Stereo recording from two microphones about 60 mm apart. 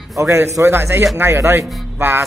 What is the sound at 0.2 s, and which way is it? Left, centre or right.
Speech, right.